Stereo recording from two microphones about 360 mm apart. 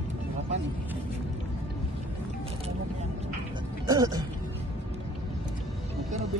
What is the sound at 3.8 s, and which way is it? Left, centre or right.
Speech, centre.